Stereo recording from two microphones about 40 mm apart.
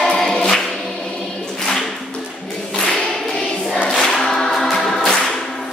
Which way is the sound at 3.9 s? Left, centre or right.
Centre.